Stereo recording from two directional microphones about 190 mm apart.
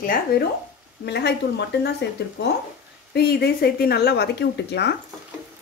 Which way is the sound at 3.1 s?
55° left (ahead or behind).